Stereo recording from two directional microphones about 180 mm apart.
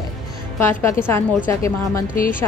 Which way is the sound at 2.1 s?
50° left (ahead or behind).